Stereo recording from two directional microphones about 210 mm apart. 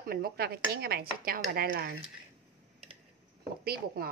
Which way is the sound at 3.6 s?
45° right (ahead or behind).